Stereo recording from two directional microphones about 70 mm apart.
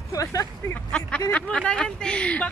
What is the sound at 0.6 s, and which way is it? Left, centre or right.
Speech, left.